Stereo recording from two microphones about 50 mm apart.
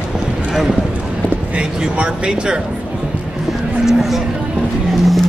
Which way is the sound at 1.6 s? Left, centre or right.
Centre.